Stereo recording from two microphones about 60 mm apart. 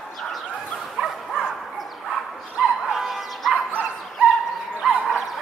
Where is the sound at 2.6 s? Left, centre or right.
Centre.